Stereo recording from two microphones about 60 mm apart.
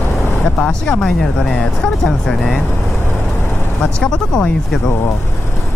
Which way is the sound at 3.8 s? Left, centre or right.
Centre.